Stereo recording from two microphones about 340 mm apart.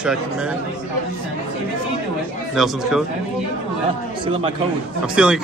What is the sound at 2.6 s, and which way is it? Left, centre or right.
Speech, centre.